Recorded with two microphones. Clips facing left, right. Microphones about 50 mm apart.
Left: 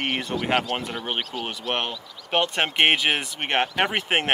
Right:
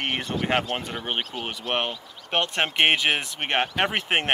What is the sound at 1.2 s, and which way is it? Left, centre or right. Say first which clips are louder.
Speech: left 1 dB; right.